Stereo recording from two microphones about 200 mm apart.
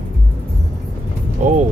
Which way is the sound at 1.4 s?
40° right (ahead or behind).